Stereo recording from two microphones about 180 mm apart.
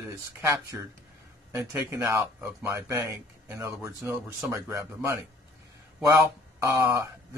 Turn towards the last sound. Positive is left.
turn(degrees=-15)  # may be behind; listen again after turning